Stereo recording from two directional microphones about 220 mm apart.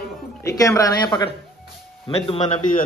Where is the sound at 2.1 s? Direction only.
30° left (ahead or behind).